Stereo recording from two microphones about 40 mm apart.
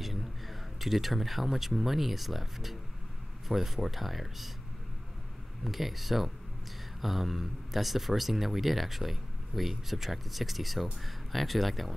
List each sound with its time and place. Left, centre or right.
0.0 s speech: centre
5.6 s speech: centre